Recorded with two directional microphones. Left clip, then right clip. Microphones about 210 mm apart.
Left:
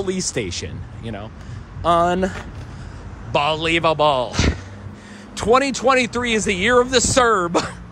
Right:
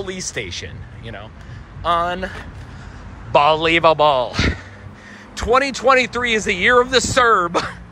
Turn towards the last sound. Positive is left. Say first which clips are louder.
# right 2 dB
turn(degrees=20)  # may be behind; listen again after turning